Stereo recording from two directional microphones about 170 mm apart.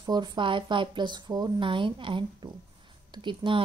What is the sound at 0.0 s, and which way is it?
A woman's voice, 25° right (ahead or behind).